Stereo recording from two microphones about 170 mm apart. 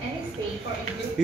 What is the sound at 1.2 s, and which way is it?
Speech, 5° right (ahead or behind).